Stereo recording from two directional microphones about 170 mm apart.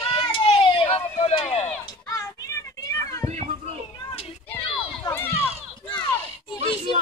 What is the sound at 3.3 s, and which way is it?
Children playing, 40° right (ahead or behind).